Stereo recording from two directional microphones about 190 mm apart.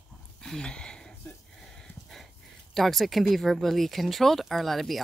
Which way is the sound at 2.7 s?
Centre (ahead or behind).